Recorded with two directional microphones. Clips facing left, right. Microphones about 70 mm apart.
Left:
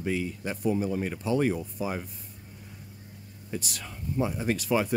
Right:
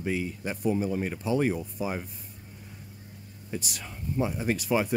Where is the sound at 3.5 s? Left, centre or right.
Centre.